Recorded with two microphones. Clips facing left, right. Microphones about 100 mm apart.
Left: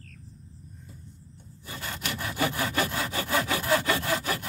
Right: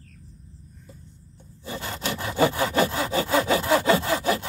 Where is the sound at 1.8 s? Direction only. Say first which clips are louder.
Right 4 dB; 25° right (ahead or behind).